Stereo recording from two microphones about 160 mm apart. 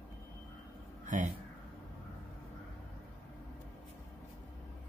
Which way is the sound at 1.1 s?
55° right (ahead or behind).